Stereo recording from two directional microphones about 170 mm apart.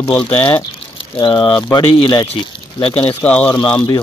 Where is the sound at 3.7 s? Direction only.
25° left (ahead or behind).